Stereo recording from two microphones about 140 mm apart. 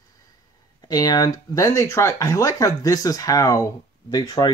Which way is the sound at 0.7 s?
25° left (ahead or behind).